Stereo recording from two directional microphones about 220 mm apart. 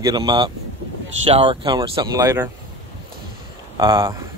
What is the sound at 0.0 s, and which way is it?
Speech, 20° right (ahead or behind).